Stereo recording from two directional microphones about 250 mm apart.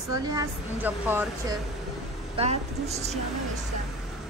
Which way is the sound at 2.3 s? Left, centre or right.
Right.